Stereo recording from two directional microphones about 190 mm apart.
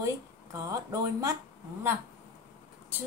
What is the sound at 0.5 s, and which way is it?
Speech, 15° right (ahead or behind).